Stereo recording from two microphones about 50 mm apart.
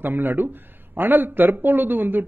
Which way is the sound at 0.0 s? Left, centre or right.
Right.